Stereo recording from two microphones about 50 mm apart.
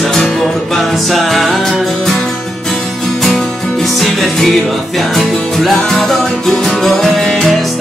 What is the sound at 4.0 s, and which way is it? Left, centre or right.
Music, centre.